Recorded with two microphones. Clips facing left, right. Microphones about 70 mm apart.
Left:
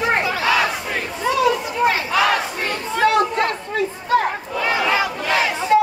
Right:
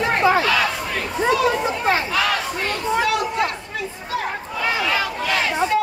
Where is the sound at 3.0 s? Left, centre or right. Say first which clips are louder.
Left 4 dB; left.